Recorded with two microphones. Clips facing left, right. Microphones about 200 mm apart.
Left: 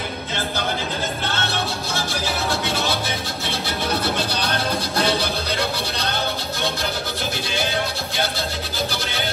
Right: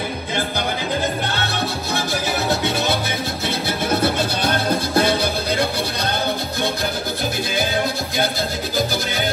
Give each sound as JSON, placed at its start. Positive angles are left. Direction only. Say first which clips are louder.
{"t": 4.0, "sound": "music", "louder": "right 4 dB", "side_deg": -50}